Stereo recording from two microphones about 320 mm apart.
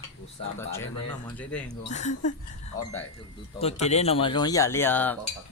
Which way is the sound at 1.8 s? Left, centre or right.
Left.